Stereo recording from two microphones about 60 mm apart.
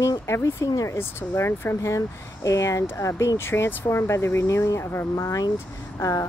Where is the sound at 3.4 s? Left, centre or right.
Left.